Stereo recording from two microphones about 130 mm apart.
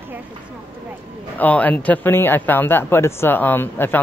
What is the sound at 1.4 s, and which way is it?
Speech, 10° left (ahead or behind).